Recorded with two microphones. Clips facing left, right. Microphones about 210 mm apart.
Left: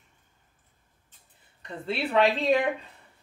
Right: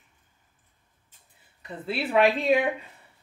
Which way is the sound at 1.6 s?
5° right (ahead or behind).